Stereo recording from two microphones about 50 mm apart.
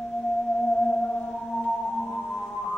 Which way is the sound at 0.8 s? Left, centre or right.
Centre.